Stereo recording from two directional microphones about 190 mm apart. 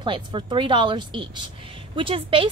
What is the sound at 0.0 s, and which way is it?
A woman's voice, 25° right (ahead or behind).